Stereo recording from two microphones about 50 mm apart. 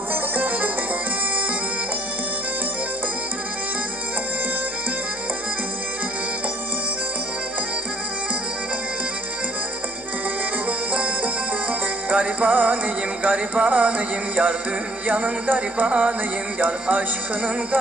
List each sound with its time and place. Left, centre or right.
0.1 s music: right
10.9 s music: right